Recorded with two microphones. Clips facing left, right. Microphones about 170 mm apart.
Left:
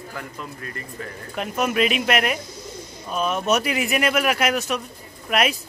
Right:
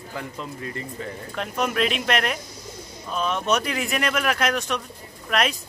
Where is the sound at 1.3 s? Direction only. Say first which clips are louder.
Left 3 dB; 5° left (ahead or behind).